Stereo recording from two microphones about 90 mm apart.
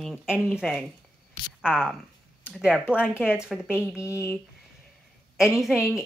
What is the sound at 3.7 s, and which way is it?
Speech, 30° left (ahead or behind).